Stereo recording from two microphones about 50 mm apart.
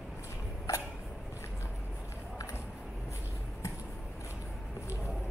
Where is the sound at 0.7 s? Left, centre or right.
Left.